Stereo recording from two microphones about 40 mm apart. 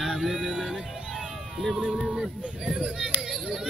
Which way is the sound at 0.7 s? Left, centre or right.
Centre.